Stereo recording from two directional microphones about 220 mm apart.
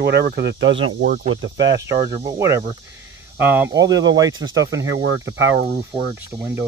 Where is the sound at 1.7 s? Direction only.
15° right (ahead or behind).